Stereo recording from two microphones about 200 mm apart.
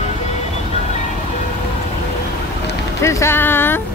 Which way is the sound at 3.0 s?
10° left (ahead or behind).